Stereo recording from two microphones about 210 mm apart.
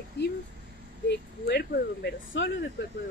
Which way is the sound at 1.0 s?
50° left (ahead or behind).